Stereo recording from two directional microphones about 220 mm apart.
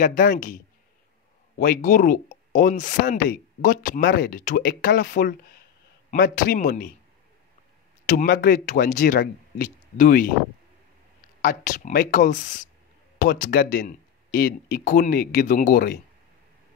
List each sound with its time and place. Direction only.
0.0 s speech: 40° left (ahead or behind)
1.6 s speech: 40° left (ahead or behind)
8.1 s speech: 35° left (ahead or behind)
11.4 s speech: 35° left (ahead or behind)